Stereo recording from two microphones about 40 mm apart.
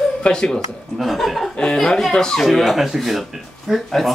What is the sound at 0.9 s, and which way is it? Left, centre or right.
Speech, centre.